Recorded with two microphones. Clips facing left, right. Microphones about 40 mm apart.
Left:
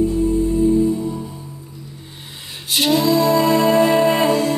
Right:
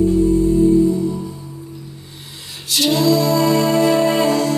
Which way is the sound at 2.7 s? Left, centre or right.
Left.